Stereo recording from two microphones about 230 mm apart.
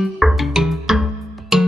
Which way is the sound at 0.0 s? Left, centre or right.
Centre.